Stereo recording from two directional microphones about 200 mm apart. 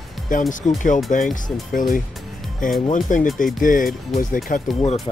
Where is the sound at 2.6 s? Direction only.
40° left (ahead or behind).